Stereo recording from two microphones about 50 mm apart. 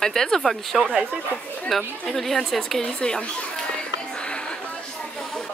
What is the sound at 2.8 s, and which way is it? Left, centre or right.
Speech, centre.